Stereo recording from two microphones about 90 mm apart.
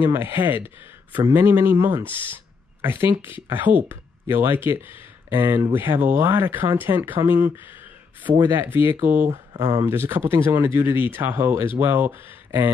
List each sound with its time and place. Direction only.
0.1 s speech: 20° right (ahead or behind)